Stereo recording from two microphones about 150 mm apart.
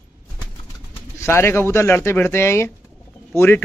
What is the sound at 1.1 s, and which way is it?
Speech, 20° left (ahead or behind).